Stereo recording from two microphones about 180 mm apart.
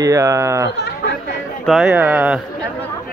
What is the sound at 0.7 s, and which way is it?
Goat, 70° left (ahead or behind).